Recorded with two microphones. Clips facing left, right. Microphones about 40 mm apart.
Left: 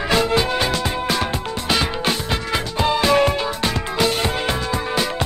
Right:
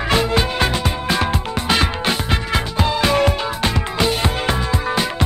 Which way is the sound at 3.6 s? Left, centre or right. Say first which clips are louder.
Right 2 dB; right.